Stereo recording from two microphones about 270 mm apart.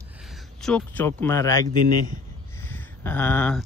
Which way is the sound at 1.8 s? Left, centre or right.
Right.